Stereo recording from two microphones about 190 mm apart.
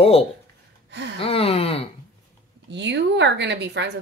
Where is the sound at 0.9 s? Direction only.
70° right (ahead or behind).